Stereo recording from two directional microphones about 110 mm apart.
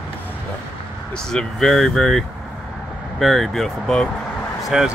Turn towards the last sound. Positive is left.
turn(degrees=0)  # may be behind; listen again after turning